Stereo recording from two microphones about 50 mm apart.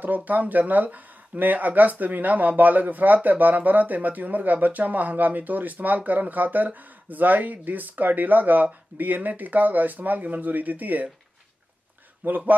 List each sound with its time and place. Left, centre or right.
0.0 s speech: right
12.3 s speech: right